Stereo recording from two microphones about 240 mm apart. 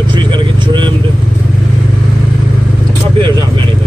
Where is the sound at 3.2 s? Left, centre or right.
Centre.